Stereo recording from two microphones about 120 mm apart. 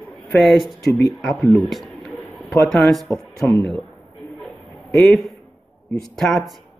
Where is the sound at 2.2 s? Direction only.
15° left (ahead or behind).